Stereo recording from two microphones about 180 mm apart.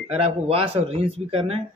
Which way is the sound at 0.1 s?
30° right (ahead or behind).